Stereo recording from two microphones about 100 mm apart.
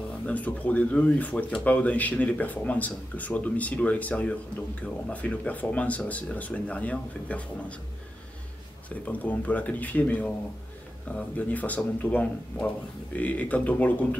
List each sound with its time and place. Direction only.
0.3 s speech: 15° left (ahead or behind)
8.8 s speech: 15° left (ahead or behind)